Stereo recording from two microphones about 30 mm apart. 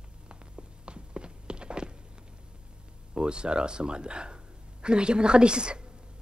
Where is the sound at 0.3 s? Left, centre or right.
Right.